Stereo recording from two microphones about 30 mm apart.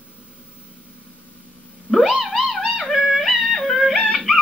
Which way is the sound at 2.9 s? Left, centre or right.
Centre.